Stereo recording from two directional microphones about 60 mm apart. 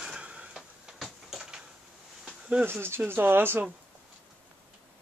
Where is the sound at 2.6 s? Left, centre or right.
Right.